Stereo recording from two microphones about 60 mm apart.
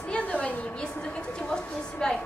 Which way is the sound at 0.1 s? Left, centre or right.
Centre.